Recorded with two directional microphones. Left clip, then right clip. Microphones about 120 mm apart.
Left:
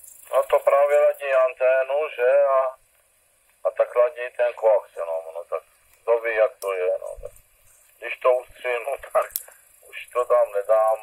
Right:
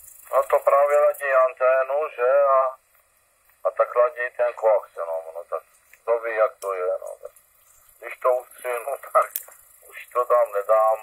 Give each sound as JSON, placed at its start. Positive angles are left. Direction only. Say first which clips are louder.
{"t": 0.2, "sound": "speech", "louder": "even", "side_deg": 20}
{"t": 5.1, "sound": "radio", "louder": "left 1 dB", "side_deg": 30}
{"t": 6.0, "sound": "speech", "louder": "left 1 dB", "side_deg": 40}
{"t": 8.0, "sound": "radio", "louder": "left 2 dB", "side_deg": 40}
{"t": 9.8, "sound": "speech", "louder": "even", "side_deg": 25}